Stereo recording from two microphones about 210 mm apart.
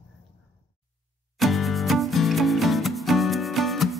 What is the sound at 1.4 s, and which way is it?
Music, centre (ahead or behind).